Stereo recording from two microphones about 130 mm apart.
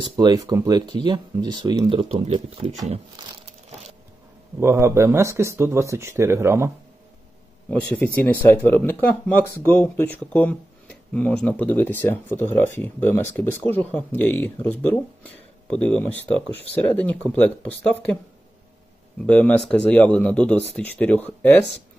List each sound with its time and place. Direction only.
0.0 s speech: 35° right (ahead or behind)
2.0 s speech: 55° right (ahead or behind)
2.3 s speech: 40° right (ahead or behind)
4.6 s speech: 20° right (ahead or behind)
7.9 s speech: 10° left (ahead or behind)
19.2 s speech: 10° left (ahead or behind)